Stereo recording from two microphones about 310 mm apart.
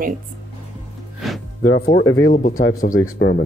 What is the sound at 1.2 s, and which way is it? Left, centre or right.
Music, centre.